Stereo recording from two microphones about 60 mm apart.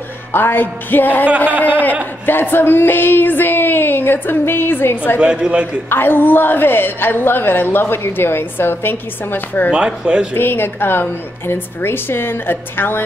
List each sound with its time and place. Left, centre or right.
0.3 s a woman's voice: left
2.2 s a woman's voice: left
5.2 s a man's voice: centre
5.9 s a woman's voice: left
9.7 s a man's voice: centre
10.3 s a woman's voice: left